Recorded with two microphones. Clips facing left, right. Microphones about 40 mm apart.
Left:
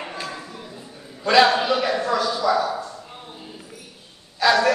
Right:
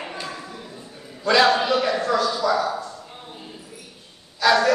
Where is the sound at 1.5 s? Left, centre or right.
Centre.